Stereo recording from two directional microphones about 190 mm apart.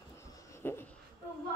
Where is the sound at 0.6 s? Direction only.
10° left (ahead or behind).